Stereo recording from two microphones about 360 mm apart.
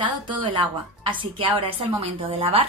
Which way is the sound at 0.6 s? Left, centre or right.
Centre.